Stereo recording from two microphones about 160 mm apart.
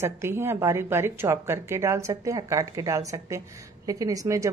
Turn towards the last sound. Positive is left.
turn(degrees=-20)  # may be behind; listen again after turning